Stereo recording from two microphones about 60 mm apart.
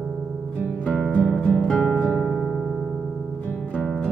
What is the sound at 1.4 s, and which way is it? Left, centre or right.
Music, centre.